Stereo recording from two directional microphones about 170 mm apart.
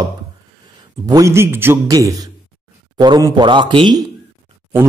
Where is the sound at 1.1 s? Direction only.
20° right (ahead or behind).